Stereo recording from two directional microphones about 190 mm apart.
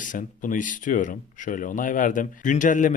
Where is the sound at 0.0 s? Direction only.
45° left (ahead or behind).